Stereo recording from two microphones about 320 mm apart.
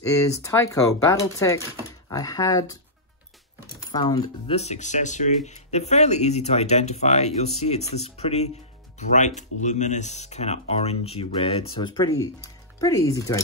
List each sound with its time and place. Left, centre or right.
0.0 s speech: centre
3.9 s speech: centre